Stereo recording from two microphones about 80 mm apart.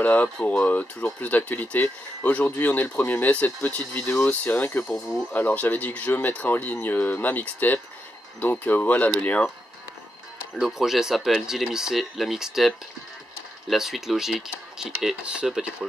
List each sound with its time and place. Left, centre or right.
0.0 s speech: centre
4.0 s speech: left; by 9.5 s centre
10.5 s speech: centre